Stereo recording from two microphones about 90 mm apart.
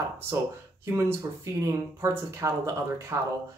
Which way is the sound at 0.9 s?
30° right (ahead or behind).